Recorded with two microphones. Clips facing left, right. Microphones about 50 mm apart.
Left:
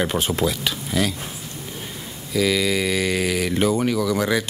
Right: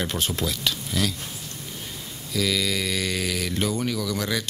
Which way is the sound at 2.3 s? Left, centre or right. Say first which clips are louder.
Left 5 dB; centre.